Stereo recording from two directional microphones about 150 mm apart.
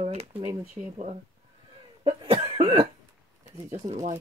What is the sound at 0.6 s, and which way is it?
Speech, 10° right (ahead or behind).